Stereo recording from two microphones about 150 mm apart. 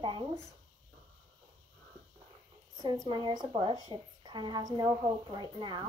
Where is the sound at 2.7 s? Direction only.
25° right (ahead or behind).